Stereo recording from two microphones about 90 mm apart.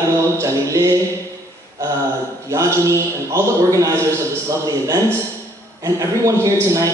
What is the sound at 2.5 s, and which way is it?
A man's voice, 35° right (ahead or behind).